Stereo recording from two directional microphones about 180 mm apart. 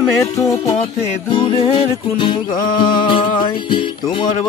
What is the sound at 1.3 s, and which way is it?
Music, 25° left (ahead or behind).